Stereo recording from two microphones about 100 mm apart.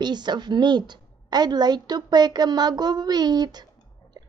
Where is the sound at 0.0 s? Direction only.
45° right (ahead or behind).